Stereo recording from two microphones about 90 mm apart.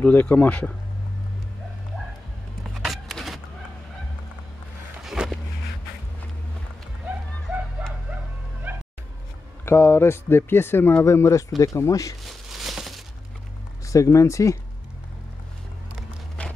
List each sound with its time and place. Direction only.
0.0 s speech: 15° left (ahead or behind)
2.6 s vehicle: centre (ahead or behind)
5.0 s vehicle: 5° right (ahead or behind)
7.5 s dog: 20° right (ahead or behind)
8.7 s music: 20° right (ahead or behind)
9.7 s speech: 30° left (ahead or behind)
12.3 s a sound: centre (ahead or behind)
13.8 s speech: 35° left (ahead or behind)
16.4 s walk: 15° left (ahead or behind)